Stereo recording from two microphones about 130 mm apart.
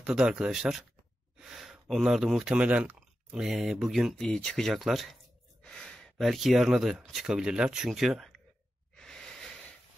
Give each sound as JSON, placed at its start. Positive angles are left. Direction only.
{"t": 0.0, "sound": "speech", "side_deg": -5}
{"t": 8.9, "sound": "wheeze", "side_deg": 5}